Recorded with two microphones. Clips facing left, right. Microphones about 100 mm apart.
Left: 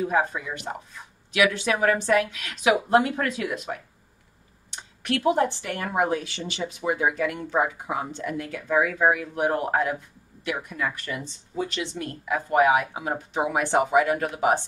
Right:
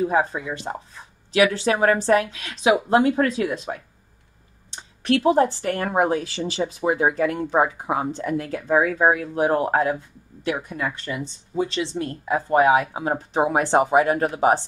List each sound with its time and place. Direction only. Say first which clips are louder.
0.0 s speech: right 3 dB; 30° right (ahead or behind)